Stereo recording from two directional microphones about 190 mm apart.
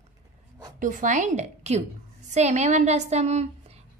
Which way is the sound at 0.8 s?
45° right (ahead or behind).